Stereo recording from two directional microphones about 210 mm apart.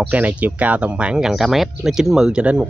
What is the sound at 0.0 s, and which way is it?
Speech, 5° right (ahead or behind).